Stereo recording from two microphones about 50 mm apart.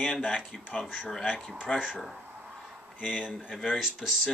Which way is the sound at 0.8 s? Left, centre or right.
Centre.